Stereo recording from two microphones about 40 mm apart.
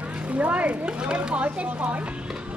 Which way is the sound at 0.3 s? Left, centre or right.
Right.